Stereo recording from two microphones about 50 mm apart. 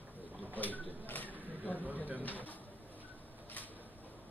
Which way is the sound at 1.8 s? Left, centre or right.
Right.